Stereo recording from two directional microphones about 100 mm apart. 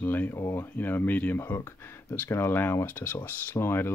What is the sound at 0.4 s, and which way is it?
Speech, 30° left (ahead or behind).